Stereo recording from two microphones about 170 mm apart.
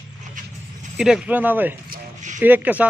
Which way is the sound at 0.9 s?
5° right (ahead or behind).